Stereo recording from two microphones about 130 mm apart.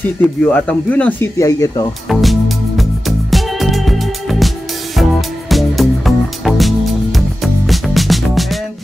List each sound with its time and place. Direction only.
0.2 s speech: 10° left (ahead or behind)
1.4 s speech: 25° left (ahead or behind)
2.0 s music: centre (ahead or behind)
5.5 s music: centre (ahead or behind)